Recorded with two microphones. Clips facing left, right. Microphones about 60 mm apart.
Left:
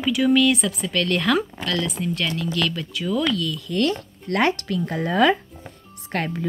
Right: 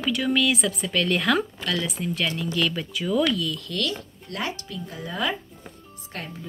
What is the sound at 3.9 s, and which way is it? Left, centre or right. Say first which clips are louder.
Speech: left 6 dB; left.